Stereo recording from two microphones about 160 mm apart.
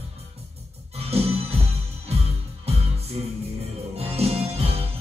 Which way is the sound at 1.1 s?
40° right (ahead or behind).